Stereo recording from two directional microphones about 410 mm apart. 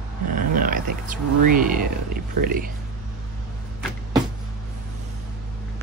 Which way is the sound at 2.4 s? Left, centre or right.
Right.